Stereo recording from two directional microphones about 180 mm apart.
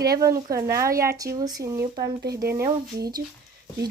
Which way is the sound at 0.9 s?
55° right (ahead or behind).